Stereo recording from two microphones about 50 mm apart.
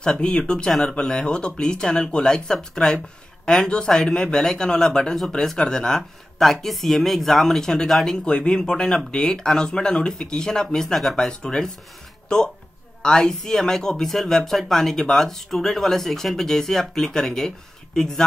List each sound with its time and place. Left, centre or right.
0.0 s speech: centre